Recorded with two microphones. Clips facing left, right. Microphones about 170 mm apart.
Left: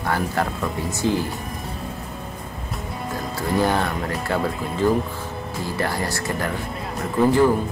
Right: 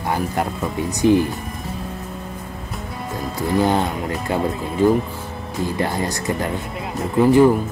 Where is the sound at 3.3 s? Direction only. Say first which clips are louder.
Right 3 dB; 15° right (ahead or behind).